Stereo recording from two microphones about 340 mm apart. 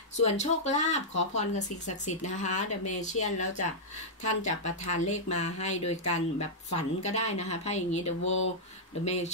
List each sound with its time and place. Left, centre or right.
0.2 s a woman's voice: centre
8.2 s speech: left
9.0 s a woman's voice: centre